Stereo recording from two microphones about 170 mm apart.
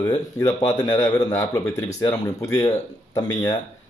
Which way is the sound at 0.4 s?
20° left (ahead or behind).